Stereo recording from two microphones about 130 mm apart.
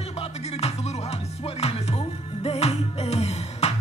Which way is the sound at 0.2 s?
55° left (ahead or behind).